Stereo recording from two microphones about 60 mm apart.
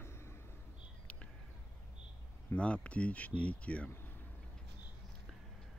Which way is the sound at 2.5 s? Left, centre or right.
Left.